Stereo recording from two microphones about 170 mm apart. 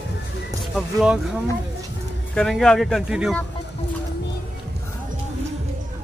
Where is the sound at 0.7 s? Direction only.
Centre (ahead or behind).